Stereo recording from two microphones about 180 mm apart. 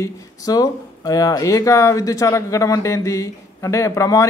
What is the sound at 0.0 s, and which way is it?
Speech, 20° left (ahead or behind).